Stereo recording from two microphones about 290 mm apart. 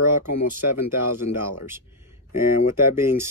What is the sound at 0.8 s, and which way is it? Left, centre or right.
Speech, centre.